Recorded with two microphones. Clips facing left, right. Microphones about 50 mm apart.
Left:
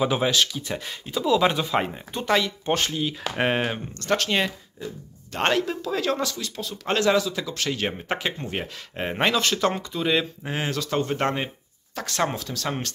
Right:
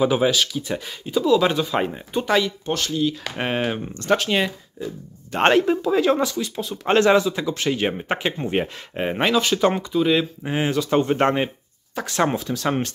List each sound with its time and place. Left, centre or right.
0.0 s speech: centre
2.6 s speech: left
3.0 s speech: centre
5.3 s speech: right
8.9 s speech: centre